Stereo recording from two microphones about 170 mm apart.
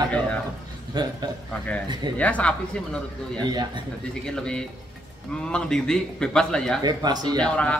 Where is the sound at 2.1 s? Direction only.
10° left (ahead or behind).